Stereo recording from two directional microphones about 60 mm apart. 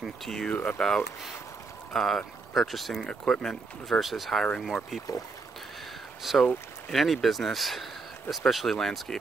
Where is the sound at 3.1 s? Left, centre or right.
Centre.